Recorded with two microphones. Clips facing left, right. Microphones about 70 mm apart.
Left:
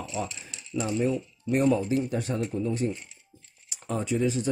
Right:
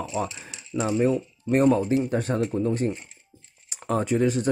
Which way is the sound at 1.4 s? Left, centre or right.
Right.